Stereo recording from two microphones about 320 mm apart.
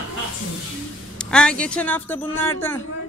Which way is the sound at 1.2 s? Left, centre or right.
Centre.